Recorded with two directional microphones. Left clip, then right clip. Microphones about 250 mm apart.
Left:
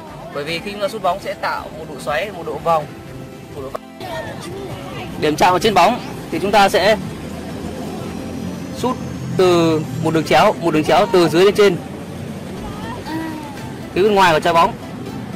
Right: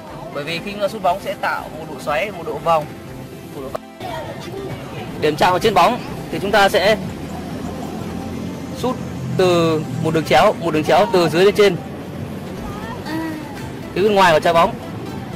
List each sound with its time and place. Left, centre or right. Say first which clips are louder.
0.4 s speech: even; centre
5.2 s speech: left 1 dB; left
8.8 s speech: left 1 dB; centre
13.9 s speech: even; centre